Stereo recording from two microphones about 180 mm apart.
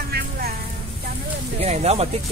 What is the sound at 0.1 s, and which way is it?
Music, 60° right (ahead or behind).